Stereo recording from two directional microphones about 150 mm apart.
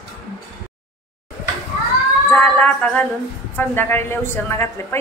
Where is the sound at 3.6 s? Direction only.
15° left (ahead or behind).